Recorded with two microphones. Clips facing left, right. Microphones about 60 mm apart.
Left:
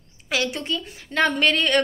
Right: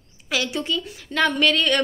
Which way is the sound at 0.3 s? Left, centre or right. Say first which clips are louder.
Even; left.